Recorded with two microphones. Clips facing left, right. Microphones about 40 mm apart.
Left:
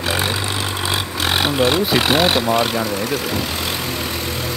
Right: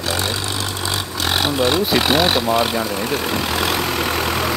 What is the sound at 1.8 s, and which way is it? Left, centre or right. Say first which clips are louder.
Speech: even; centre.